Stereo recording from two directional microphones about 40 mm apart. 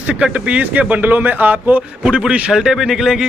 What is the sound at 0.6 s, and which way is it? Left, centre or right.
Speech, right.